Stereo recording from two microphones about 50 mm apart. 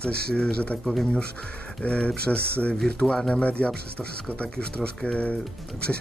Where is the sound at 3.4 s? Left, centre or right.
Left.